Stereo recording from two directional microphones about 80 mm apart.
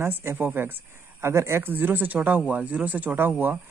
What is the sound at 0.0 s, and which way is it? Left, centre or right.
Speech, right.